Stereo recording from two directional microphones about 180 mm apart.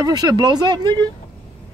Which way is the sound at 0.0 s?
20° right (ahead or behind).